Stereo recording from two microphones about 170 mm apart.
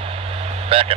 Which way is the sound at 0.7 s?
35° right (ahead or behind).